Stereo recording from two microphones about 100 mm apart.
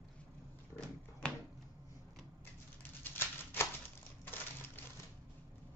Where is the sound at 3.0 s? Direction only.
20° left (ahead or behind).